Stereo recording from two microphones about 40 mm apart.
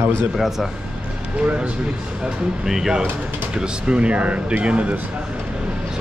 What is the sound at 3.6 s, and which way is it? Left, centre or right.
Speech, right.